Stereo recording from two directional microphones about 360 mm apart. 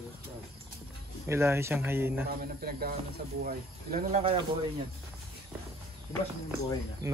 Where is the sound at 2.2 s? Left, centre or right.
Right.